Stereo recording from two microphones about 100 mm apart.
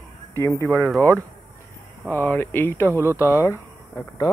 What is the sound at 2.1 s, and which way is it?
Speech, 20° left (ahead or behind).